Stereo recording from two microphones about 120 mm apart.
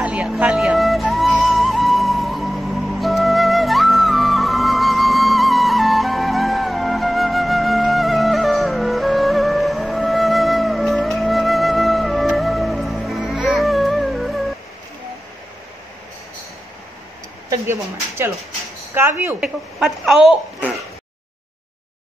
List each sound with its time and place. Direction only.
0.0 s vehicle: 10° right (ahead or behind)
0.4 s music: 10° right (ahead or behind)
17.5 s a sound: 20° right (ahead or behind)
18.9 s a woman's voice: 20° right (ahead or behind)
19.4 s a child's voice: 5° right (ahead or behind)